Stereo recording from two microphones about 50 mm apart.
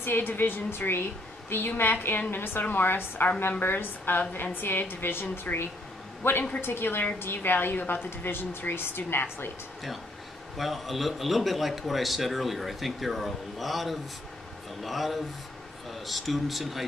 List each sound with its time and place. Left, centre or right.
0.0 s a woman's voice: left
10.6 s a man's voice: centre